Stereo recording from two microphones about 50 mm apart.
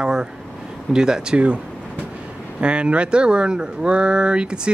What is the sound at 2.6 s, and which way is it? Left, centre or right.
Speech, right.